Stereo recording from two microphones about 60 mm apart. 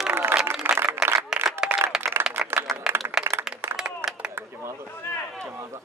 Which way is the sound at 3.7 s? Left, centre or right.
Centre.